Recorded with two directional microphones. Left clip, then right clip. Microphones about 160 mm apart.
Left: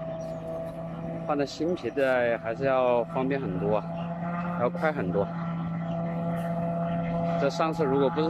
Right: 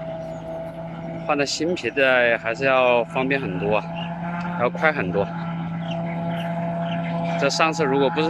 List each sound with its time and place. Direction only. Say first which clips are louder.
1.2 s speech: right 6 dB; 5° left (ahead or behind)
6.2 s vehicle: right 4 dB; centre (ahead or behind)